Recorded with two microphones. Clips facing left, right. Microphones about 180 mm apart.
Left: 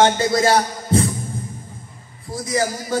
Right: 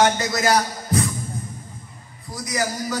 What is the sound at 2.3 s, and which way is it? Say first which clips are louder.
Speech: left 4 dB; 30° left (ahead or behind).